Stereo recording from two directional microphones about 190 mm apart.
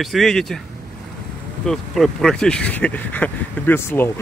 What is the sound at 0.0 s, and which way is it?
Speech, centre (ahead or behind).